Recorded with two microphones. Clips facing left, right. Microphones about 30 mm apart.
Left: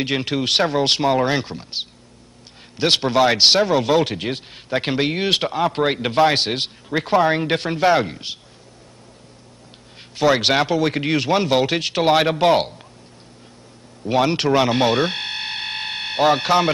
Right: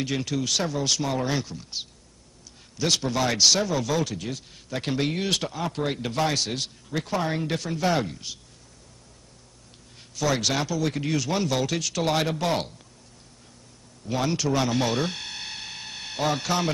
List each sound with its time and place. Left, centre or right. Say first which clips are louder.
0.0 s speech: left 6 dB; left
9.9 s speech: left 8 dB; left
14.0 s speech: left 8 dB; left